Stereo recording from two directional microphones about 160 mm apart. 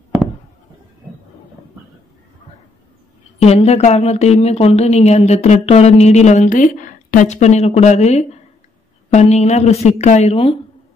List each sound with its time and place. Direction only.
3.3 s speech: 40° left (ahead or behind)